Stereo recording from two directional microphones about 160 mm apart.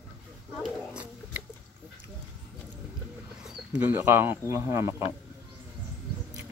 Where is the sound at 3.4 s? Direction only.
10° right (ahead or behind).